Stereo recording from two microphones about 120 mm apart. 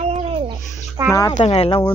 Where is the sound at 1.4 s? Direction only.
55° left (ahead or behind).